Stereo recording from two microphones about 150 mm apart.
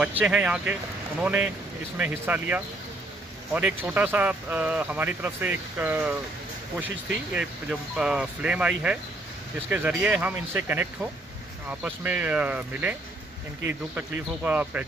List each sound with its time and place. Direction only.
0.2 s a man's voice: 5° right (ahead or behind)
7.9 s a man's voice: 5° right (ahead or behind)